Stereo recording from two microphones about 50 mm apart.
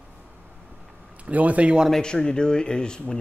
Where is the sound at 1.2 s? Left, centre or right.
Right.